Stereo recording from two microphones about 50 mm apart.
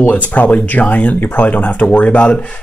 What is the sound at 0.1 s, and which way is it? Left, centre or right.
Speech, left.